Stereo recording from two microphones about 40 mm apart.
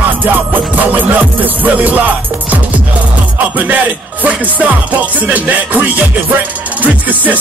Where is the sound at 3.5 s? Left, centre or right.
Right.